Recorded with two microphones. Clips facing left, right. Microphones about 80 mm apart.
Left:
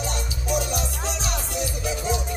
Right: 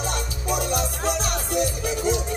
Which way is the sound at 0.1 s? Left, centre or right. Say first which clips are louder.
Even; right.